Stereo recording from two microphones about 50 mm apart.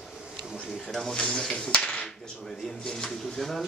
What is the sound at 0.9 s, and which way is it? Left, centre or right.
Speech, centre.